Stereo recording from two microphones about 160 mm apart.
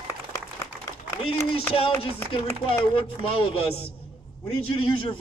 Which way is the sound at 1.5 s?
35° left (ahead or behind).